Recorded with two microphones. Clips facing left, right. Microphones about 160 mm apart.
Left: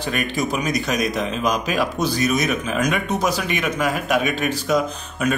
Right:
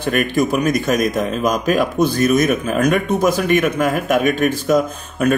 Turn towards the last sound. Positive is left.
turn(degrees=-50)  # may be behind; listen again after turning